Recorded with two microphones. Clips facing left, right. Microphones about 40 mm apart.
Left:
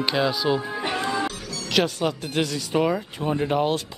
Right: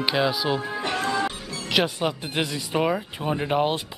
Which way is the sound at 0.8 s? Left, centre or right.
Centre.